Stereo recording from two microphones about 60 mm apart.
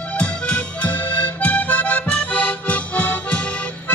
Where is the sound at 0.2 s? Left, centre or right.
Left.